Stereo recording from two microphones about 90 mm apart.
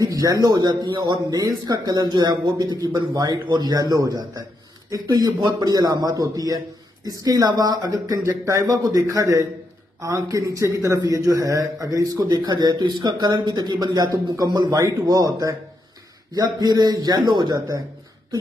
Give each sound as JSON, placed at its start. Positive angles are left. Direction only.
{"t": 0.0, "sound": "a man's voice", "side_deg": -40}
{"t": 1.3, "sound": "a man's voice", "side_deg": -45}